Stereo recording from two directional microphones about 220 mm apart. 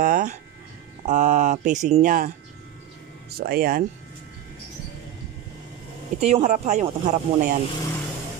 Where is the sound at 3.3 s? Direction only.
45° right (ahead or behind).